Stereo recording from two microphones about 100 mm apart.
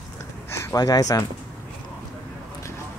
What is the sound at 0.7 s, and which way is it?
Speech, 40° left (ahead or behind).